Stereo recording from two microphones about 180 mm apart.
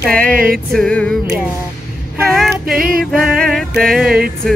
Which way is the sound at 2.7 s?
55° right (ahead or behind).